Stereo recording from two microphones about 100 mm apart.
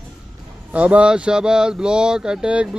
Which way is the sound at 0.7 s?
15° right (ahead or behind).